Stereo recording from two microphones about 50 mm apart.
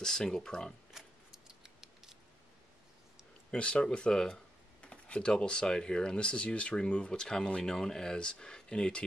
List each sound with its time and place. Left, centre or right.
0.0 s speech: centre
0.9 s a sound: centre
3.5 s speech: left